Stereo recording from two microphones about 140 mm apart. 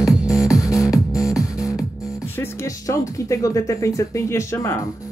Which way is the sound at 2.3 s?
20° left (ahead or behind).